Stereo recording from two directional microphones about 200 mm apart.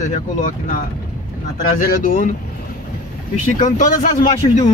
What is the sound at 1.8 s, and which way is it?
Speech, 45° left (ahead or behind).